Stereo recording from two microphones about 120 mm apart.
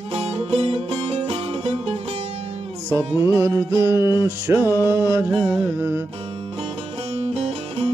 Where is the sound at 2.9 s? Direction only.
20° right (ahead or behind).